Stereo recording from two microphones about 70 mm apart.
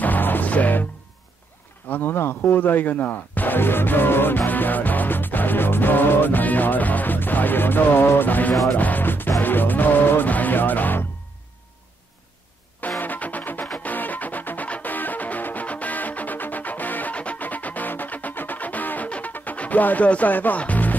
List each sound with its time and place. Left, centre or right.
0.0 s music: left
1.9 s speech: left
8.7 s music: left
13.0 s music: left